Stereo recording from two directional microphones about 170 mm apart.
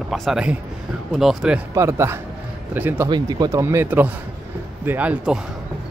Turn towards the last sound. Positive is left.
turn(degrees=-10)  # may be behind; listen again after turning